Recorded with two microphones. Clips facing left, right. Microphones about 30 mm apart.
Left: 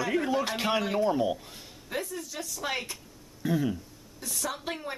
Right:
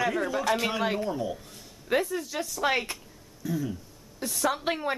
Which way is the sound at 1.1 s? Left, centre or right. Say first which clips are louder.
Left 4 dB; left.